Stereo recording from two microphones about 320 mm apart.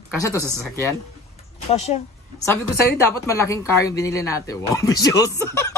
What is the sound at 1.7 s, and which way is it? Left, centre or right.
Speech, centre.